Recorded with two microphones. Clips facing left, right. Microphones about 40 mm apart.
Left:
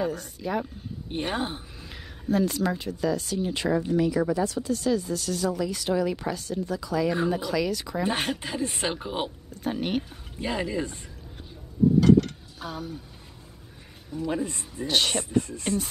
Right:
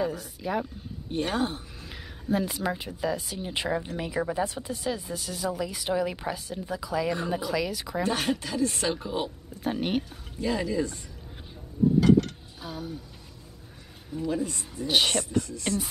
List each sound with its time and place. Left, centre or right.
0.0 s speech: centre
1.3 s speech: left
1.8 s speech: centre
8.0 s speech: left
9.6 s speech: centre
10.4 s speech: left
12.0 s speech: centre
14.2 s a man's voice: left
14.9 s speech: centre
15.3 s a man's voice: left